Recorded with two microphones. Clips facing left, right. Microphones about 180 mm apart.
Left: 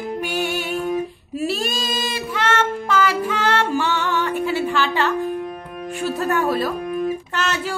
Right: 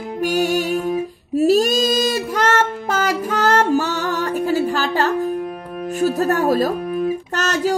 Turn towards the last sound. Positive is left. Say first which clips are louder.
# right 4 dB
turn(degrees=-40)  # may be behind; listen again after turning